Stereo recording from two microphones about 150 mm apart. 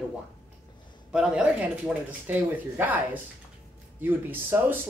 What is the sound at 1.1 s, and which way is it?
Speech, 10° right (ahead or behind).